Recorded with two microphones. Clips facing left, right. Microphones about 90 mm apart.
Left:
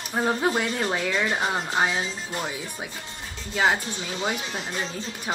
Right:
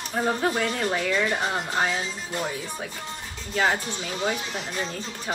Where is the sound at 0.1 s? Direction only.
20° left (ahead or behind).